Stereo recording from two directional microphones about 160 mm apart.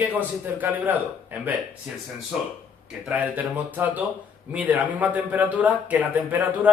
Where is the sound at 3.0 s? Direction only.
10° right (ahead or behind).